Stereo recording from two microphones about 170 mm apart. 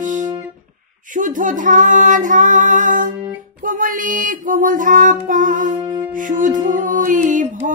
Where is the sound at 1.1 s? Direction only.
50° right (ahead or behind).